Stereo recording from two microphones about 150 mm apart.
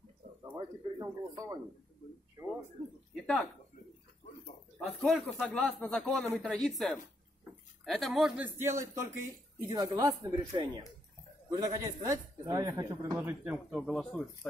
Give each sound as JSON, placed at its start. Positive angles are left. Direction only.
{"t": 0.6, "sound": "a sound", "side_deg": -25}
{"t": 4.7, "sound": "speech", "side_deg": 0}
{"t": 8.5, "sound": "a man's voice", "side_deg": -15}